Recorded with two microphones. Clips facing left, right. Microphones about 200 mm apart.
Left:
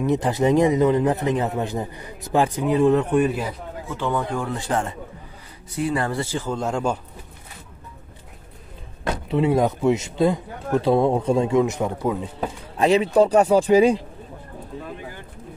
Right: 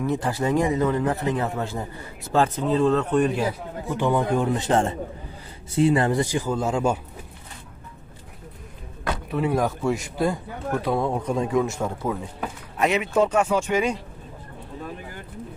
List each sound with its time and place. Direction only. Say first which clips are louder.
0.0 s a man's voice: left 4 dB; 20° left (ahead or behind)
3.9 s a man's voice: right 3 dB; 15° right (ahead or behind)
9.3 s a man's voice: left 4 dB; 20° left (ahead or behind)